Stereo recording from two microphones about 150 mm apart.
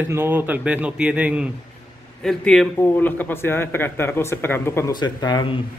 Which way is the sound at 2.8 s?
15° left (ahead or behind).